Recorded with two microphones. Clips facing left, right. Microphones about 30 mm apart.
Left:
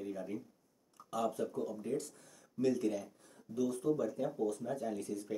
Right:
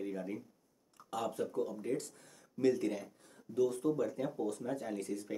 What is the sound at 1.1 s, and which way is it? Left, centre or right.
Speech, right.